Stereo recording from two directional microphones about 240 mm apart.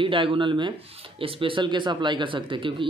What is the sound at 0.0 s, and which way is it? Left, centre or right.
Speech, right.